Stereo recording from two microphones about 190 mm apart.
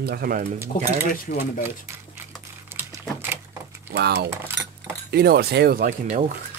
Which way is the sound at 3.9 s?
60° right (ahead or behind).